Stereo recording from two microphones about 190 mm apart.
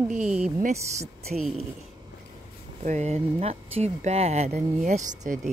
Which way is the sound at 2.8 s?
40° right (ahead or behind).